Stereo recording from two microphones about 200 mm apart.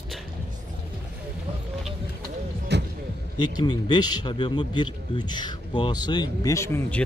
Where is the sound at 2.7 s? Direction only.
60° right (ahead or behind).